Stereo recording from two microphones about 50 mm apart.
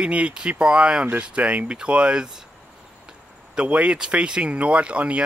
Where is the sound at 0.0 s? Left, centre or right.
Right.